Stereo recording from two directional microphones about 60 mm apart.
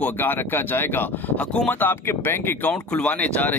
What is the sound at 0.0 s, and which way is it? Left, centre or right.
Speech, left.